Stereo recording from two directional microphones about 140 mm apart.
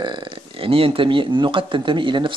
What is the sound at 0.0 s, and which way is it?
Speech, 35° right (ahead or behind).